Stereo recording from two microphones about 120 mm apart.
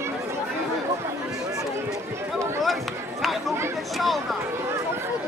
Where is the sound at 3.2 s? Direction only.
Centre (ahead or behind).